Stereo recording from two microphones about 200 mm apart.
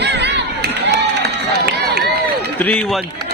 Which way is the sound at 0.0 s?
60° right (ahead or behind).